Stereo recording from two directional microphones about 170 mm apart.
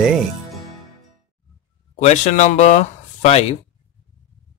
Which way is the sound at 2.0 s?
45° left (ahead or behind).